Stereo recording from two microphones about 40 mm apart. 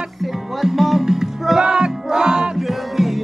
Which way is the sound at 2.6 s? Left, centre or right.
Centre.